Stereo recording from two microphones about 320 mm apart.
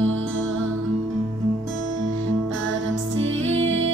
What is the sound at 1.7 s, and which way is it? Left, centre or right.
Music, right.